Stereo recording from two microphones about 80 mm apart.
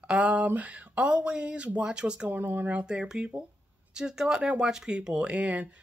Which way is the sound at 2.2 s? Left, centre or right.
Right.